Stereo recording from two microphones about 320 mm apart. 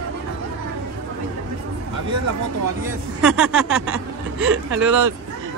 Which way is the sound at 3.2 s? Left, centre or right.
Centre.